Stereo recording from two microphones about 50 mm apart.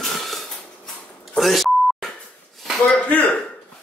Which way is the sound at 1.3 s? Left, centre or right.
Centre.